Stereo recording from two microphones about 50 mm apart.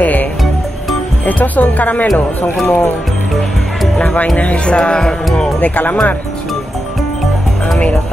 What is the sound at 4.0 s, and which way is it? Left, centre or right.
Music, left.